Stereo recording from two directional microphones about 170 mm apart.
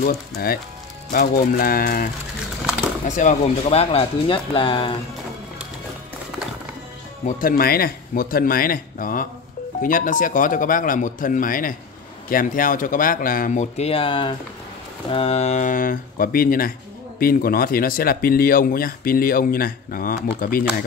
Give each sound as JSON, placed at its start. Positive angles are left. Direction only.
{"t": 0.4, "sound": "speech", "side_deg": 60}
{"t": 3.1, "sound": "speech", "side_deg": 45}
{"t": 7.2, "sound": "speech", "side_deg": 55}
{"t": 13.7, "sound": "speech", "side_deg": 35}